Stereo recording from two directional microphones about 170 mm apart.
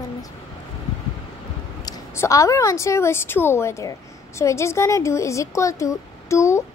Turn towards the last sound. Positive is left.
turn(degrees=15)  # may be behind; listen again after turning